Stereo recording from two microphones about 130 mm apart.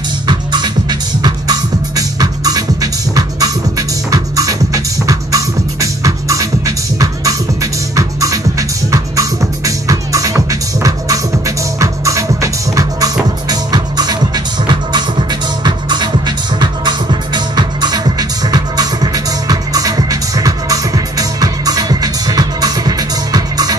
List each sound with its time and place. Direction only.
0.3 s music: 35° right (ahead or behind)